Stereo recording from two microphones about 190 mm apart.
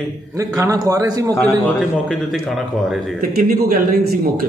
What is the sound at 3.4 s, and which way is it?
A man's voice, 50° right (ahead or behind).